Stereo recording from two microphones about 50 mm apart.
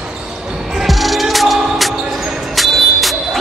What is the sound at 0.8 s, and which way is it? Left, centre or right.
Music, centre.